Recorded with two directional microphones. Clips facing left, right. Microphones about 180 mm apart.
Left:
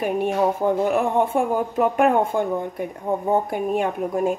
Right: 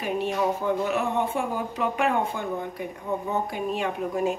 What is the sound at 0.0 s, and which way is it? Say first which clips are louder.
A woman's voice: left 5 dB; 50° left (ahead or behind).